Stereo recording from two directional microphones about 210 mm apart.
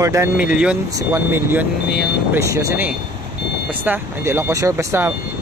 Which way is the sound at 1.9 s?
Centre (ahead or behind).